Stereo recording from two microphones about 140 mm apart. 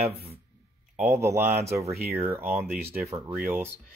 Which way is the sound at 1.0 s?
20° right (ahead or behind).